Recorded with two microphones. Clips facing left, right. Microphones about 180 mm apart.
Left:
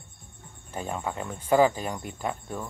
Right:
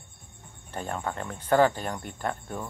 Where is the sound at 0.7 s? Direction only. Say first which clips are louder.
Even; 5° left (ahead or behind).